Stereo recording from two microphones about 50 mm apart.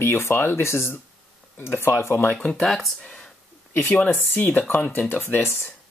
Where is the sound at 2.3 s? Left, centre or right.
Centre.